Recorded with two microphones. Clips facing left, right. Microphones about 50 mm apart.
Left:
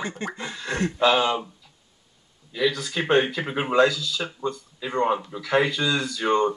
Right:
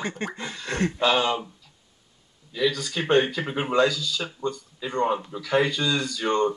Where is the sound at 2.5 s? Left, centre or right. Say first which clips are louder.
Left 1 dB; centre.